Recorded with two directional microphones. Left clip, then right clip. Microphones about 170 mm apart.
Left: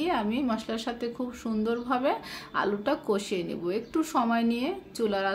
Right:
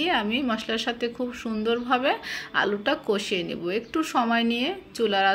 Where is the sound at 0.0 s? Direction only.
5° right (ahead or behind).